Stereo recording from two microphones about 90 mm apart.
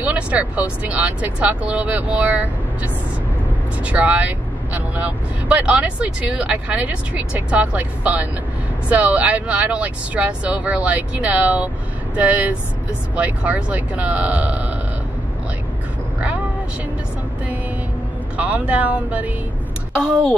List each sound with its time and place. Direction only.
0.0 s speech: 15° right (ahead or behind)
3.8 s speech: 15° right (ahead or behind)
16.2 s vehicle: 15° right (ahead or behind)
18.4 s speech: 15° right (ahead or behind)